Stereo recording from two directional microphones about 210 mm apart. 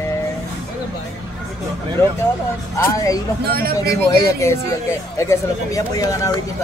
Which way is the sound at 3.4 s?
50° right (ahead or behind).